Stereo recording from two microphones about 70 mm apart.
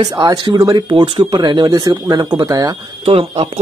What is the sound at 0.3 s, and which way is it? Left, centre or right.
Speech, right.